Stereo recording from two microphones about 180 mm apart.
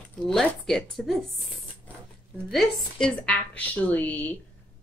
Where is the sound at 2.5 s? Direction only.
5° left (ahead or behind).